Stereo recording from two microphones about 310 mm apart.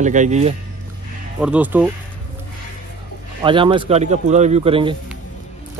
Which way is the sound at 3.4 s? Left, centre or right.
Centre.